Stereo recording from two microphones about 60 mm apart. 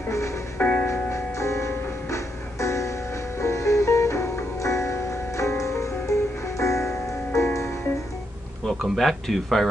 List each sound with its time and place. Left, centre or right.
0.6 s music: left
0.8 s music: left
8.6 s speech: centre